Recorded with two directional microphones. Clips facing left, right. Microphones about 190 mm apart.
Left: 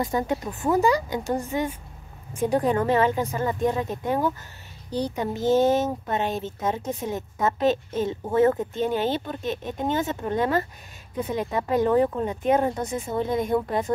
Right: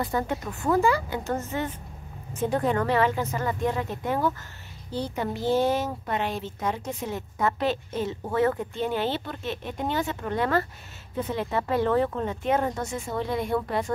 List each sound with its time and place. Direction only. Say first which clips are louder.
0.0 s a woman's voice: left 3 dB; 15° left (ahead or behind)